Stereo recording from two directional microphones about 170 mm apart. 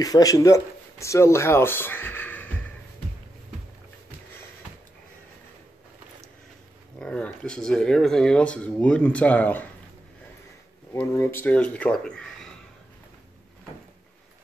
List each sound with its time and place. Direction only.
0.0 s speech: 20° left (ahead or behind)
7.0 s speech: 5° left (ahead or behind)
10.9 s speech: 15° left (ahead or behind)